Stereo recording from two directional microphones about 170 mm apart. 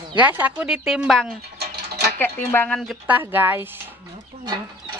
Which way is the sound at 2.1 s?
10° left (ahead or behind).